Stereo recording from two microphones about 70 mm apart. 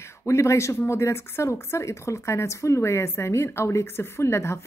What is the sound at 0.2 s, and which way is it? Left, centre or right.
A woman's voice, left.